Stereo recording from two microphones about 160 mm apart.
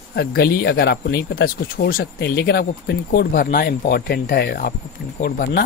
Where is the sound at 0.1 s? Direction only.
70° left (ahead or behind).